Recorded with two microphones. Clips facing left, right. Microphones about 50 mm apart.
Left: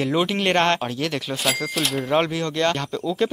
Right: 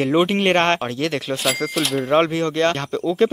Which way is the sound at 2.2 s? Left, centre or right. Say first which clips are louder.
Right 4 dB; right.